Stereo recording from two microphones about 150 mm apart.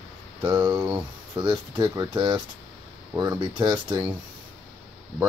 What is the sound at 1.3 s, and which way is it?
Speech, 30° right (ahead or behind).